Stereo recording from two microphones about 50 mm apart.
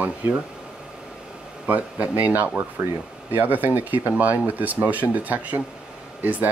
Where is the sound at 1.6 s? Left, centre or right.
Right.